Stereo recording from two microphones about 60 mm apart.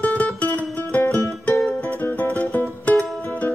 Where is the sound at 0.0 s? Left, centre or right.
Left.